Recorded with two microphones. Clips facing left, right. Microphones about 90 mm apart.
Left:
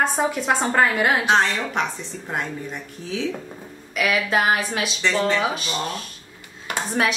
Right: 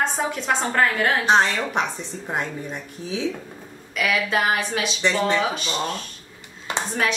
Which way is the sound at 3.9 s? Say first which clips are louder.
Left 1 dB; 5° left (ahead or behind).